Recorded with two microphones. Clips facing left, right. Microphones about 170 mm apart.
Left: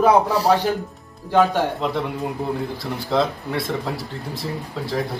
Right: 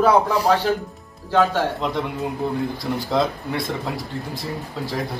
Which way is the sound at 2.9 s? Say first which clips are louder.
Left 1 dB; centre (ahead or behind).